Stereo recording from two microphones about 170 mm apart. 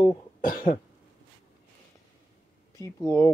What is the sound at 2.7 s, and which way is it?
Speech, 15° left (ahead or behind).